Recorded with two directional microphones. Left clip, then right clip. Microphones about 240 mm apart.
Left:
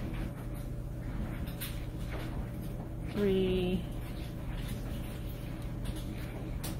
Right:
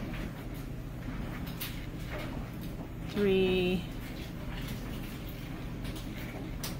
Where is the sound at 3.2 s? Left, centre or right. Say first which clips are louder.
Right 3 dB; centre.